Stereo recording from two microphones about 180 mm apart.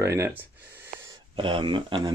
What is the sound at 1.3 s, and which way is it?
Speech, 30° right (ahead or behind).